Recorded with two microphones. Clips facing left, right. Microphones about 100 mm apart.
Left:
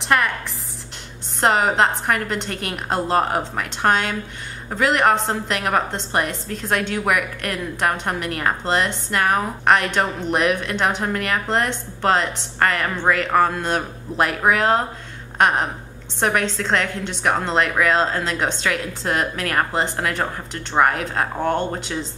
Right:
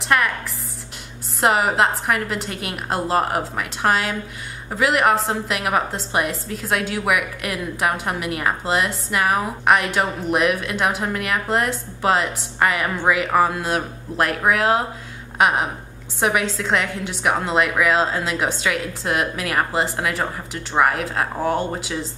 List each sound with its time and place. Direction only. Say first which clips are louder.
0.0 s a woman's voice: even; centre (ahead or behind)
1.4 s a woman's voice: even; 5° right (ahead or behind)
15.3 s a sound: even; 5° right (ahead or behind)
16.2 s a woman's voice: even; 5° right (ahead or behind)